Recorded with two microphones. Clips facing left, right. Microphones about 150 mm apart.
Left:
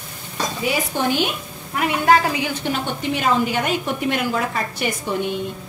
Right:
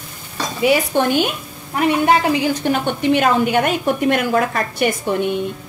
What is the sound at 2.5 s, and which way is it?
Speech, 45° right (ahead or behind).